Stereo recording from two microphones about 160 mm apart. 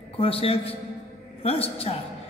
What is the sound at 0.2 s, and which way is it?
Speech, 35° left (ahead or behind).